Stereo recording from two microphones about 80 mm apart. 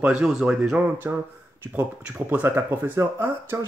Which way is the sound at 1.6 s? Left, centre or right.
Right.